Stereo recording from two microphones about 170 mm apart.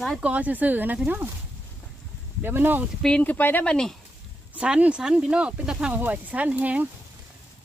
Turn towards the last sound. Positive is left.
turn(degrees=-10)  # may be behind; listen again after turning